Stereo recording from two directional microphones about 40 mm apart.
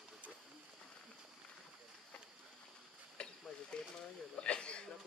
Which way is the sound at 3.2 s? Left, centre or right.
Left.